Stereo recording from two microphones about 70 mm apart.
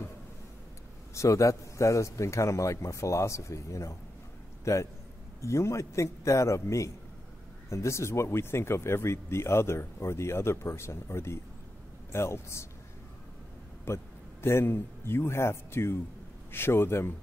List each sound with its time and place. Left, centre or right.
1.1 s a man's voice: left
13.8 s a man's voice: left